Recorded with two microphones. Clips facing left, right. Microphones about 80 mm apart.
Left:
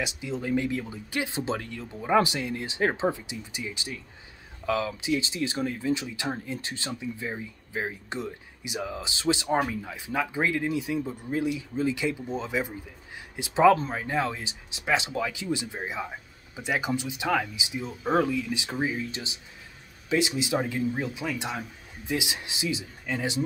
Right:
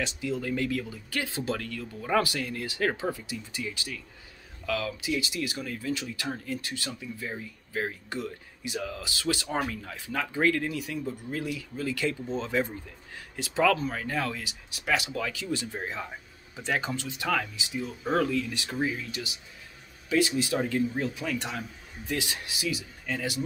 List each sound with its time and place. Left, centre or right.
0.0 s speech: centre